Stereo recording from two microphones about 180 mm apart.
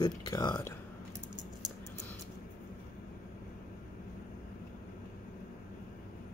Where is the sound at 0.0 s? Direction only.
20° left (ahead or behind).